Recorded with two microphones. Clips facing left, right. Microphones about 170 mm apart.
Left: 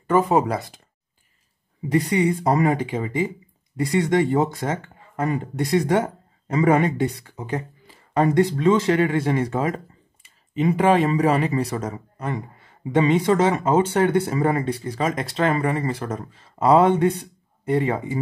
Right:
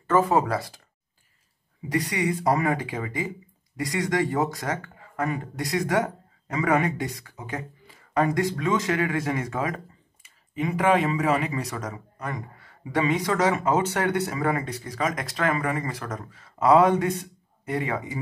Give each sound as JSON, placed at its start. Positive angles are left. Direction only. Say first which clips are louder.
{"t": 0.0, "sound": "speech", "louder": "left 3 dB", "side_deg": 15}
{"t": 1.9, "sound": "speech", "louder": "left 6 dB", "side_deg": 25}